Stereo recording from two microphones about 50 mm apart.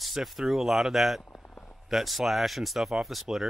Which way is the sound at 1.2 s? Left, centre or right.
Left.